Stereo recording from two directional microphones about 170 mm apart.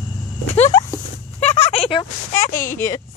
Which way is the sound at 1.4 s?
40° left (ahead or behind).